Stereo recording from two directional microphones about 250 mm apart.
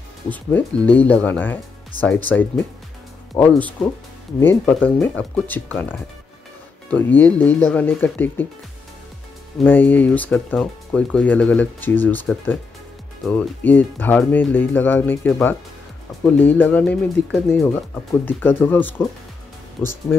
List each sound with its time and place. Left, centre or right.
0.3 s speech: centre
9.6 s speech: centre